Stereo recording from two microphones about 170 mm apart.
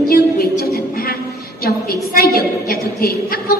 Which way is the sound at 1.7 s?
65° left (ahead or behind).